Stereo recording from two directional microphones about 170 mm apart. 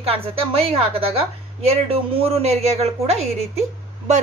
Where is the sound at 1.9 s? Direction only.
35° right (ahead or behind).